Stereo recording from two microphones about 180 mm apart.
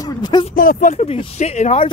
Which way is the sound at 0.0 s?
25° left (ahead or behind).